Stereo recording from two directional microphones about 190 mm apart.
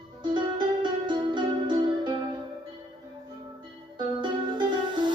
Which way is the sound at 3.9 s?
25° right (ahead or behind).